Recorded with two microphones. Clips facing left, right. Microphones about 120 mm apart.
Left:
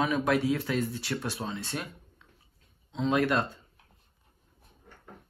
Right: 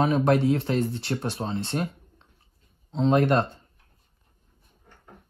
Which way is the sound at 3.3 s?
50° right (ahead or behind).